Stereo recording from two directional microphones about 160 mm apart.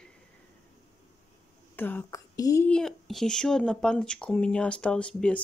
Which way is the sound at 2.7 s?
5° left (ahead or behind).